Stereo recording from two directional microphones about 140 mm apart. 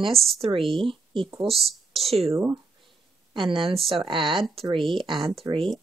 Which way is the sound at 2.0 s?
45° right (ahead or behind).